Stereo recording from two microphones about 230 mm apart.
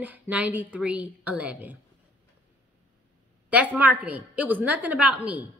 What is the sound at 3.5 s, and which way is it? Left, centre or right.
A woman's voice, centre.